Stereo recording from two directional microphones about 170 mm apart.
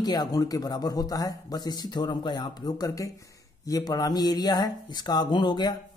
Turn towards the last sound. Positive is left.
turn(degrees=25)  # may be behind; listen again after turning